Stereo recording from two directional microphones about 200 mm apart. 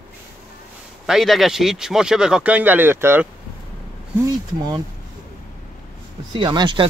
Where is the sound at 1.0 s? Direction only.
Centre (ahead or behind).